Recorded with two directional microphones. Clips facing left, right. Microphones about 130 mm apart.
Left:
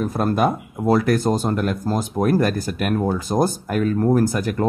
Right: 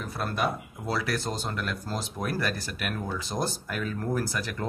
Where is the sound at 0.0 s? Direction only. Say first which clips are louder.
Left 10 dB; 45° left (ahead or behind).